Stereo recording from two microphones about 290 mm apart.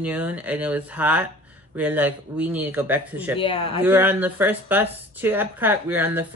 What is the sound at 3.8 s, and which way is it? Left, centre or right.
A woman's voice, centre.